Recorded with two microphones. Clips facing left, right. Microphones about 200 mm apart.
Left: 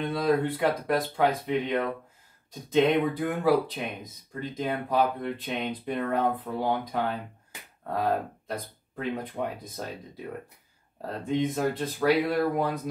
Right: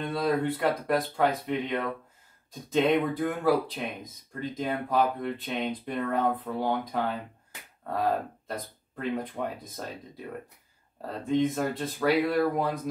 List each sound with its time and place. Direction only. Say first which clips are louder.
0.0 s speech: left 2 dB; centre (ahead or behind)
11.2 s speech: right 1 dB; centre (ahead or behind)